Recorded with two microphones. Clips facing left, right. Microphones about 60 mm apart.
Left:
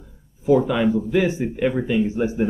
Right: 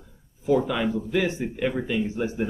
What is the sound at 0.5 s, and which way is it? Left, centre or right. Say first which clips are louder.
Speech: left 5 dB; centre.